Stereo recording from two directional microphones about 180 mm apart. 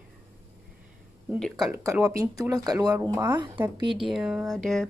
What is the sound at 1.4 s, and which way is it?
Speech, centre (ahead or behind).